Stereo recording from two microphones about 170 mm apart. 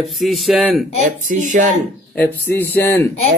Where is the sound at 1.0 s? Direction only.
50° right (ahead or behind).